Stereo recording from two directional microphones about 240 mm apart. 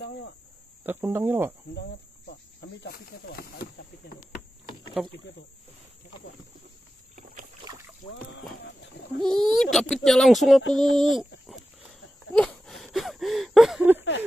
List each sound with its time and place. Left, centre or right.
0.8 s speech: centre
1.8 s speech: left
5.0 s speech: centre
8.1 s a sound: left
9.2 s speech: centre
11.4 s a sound: centre